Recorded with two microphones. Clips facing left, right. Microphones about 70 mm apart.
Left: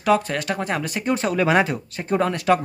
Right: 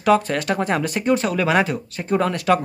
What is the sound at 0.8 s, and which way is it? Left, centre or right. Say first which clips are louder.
Speech: right 3 dB; centre.